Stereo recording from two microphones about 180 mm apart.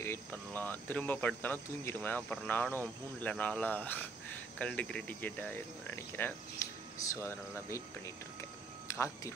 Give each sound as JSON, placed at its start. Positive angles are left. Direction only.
{"t": 0.0, "sound": "speech", "side_deg": 10}
{"t": 8.8, "sound": "speech", "side_deg": 15}